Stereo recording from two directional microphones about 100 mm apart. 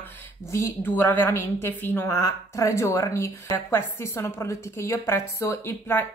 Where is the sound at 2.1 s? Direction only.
35° left (ahead or behind).